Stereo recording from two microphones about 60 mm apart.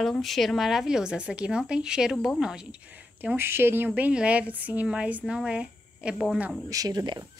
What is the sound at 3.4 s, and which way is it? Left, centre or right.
Speech, right.